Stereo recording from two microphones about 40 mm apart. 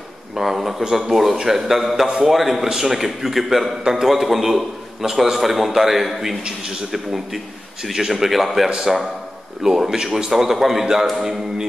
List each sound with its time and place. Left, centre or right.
0.4 s a man's voice: centre
2.0 s a man's voice: centre
2.3 s a man's voice: centre
8.6 s a man's voice: centre